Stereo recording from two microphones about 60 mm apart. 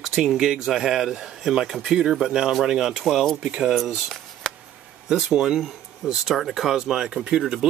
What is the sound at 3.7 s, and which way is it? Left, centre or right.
Speech, centre.